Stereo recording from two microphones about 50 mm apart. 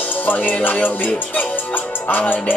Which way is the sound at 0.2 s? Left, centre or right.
Left.